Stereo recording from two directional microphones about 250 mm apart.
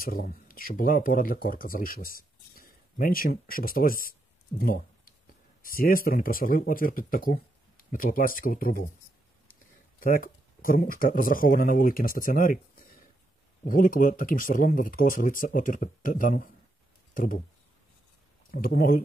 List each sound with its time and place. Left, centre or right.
0.0 s speech: left
18.5 s speech: left